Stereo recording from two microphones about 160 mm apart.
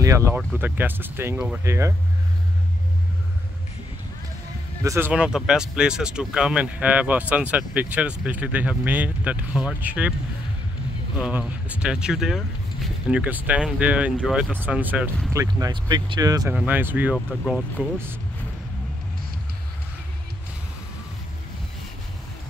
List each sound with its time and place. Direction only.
0.0 s speech: 20° right (ahead or behind)
4.8 s speech: 15° right (ahead or behind)
5.1 s speech: 5° right (ahead or behind)
11.1 s speech: 5° right (ahead or behind)
15.3 s speech: 25° right (ahead or behind)
16.5 s speech: 10° right (ahead or behind)